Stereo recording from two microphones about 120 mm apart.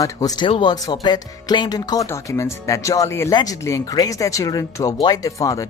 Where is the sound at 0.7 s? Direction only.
35° left (ahead or behind).